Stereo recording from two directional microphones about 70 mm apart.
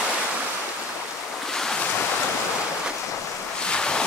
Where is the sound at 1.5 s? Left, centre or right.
Centre.